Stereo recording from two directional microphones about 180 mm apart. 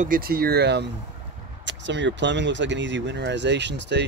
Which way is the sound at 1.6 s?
80° right.